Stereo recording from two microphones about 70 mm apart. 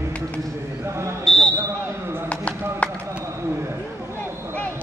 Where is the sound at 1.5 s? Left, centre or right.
Right.